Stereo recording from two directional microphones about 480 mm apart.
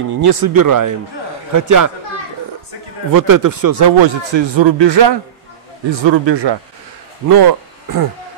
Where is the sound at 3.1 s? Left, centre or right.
Right.